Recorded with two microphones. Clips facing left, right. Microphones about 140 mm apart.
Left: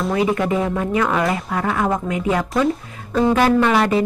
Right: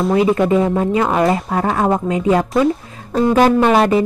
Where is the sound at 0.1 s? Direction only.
30° right (ahead or behind).